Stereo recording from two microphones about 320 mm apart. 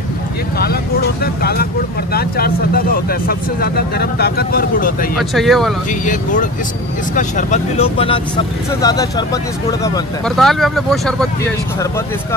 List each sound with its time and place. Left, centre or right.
1.2 s speech: left
5.1 s speech: centre
7.2 s speech: left; by 11.2 s centre